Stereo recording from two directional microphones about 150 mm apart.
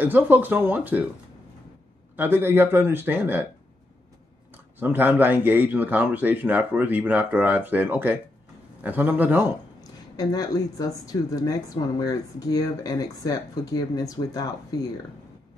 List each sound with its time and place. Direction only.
0.0 s a man's voice: 10° right (ahead or behind)
2.1 s a man's voice: 15° right (ahead or behind)
4.7 s a man's voice: 15° right (ahead or behind)
10.1 s a woman's voice: 25° left (ahead or behind)